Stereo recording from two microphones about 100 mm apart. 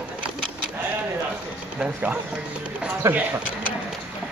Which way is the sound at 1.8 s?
15° right (ahead or behind).